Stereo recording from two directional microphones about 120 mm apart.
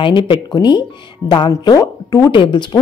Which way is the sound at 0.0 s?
45° left (ahead or behind).